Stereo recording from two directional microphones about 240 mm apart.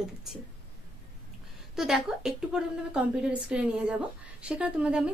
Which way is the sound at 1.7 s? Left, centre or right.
Centre.